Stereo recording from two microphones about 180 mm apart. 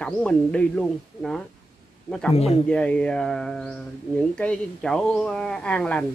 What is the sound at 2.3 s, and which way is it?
Speech, 35° left (ahead or behind).